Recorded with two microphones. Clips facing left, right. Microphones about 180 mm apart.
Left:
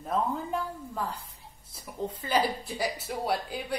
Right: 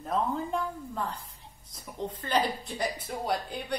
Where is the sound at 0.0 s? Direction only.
5° left (ahead or behind).